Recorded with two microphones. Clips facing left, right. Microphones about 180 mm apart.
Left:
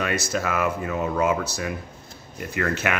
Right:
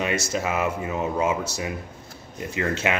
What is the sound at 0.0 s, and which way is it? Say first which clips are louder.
Speech: even; 25° right (ahead or behind).